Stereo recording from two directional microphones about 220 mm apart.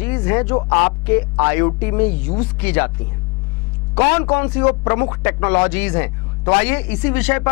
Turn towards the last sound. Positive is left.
turn(degrees=10)  # may be behind; listen again after turning